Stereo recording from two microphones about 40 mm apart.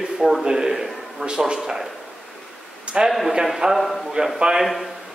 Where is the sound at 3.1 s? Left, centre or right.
Centre.